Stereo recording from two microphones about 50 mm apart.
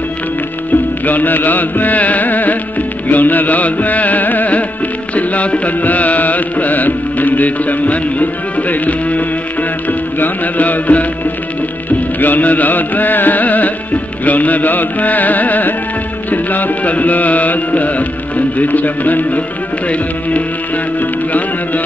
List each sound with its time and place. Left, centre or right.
1.0 s carnatic music: left
3.1 s music: left
12.2 s music: left